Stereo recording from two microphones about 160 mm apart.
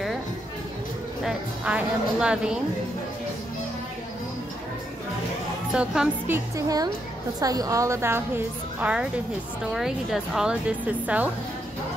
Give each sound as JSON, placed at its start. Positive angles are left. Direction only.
{"t": 1.2, "sound": "a woman's voice", "side_deg": -5}
{"t": 5.7, "sound": "a woman's voice", "side_deg": -5}